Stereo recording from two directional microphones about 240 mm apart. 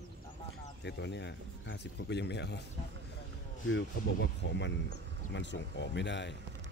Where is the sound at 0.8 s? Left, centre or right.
Left.